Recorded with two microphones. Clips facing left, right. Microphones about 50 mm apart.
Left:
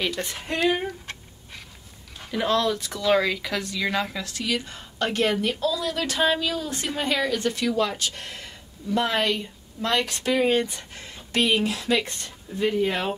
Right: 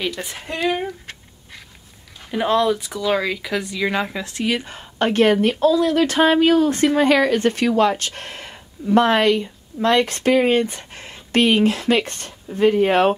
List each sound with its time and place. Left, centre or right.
0.0 s speech: centre
2.3 s speech: right
3.6 s a woman's voice: centre; by 13.1 s right